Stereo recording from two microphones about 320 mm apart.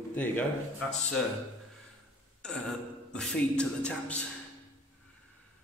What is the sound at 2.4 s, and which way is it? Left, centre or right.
A man's voice, centre.